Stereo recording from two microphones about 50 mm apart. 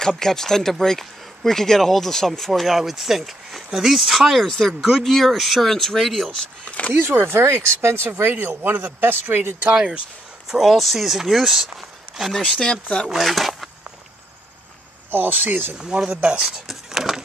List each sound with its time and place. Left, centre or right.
0.2 s speech: centre
6.9 s speech: right
8.2 s speech: right
9.8 s speech: centre
10.5 s speech: centre
12.3 s speech: centre
15.0 s speech: right
16.1 s speech: right
16.5 s speech: centre